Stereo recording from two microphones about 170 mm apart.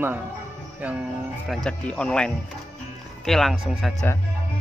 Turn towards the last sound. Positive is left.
turn(degrees=0)  # may be behind; listen again after turning